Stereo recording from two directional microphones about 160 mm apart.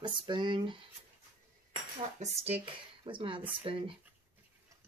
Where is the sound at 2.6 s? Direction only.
30° right (ahead or behind).